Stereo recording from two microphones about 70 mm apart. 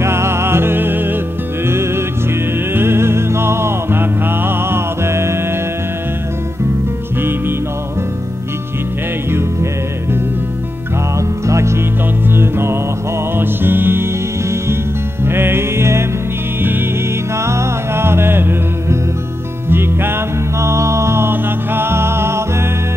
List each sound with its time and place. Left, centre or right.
0.0 s music: right
2.7 s music: right
11.1 s music: right
15.2 s music: right
17.4 s music: right
20.6 s music: right